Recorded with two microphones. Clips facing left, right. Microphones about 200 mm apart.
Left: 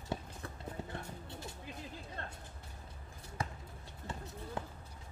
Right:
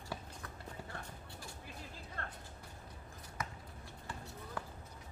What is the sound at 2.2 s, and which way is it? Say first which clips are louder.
Music: right 1 dB; 20° left (ahead or behind).